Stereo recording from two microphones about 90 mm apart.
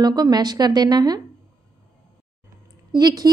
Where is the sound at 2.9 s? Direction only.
50° right (ahead or behind).